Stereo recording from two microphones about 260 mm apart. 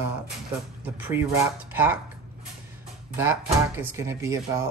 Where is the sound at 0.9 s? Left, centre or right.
Centre.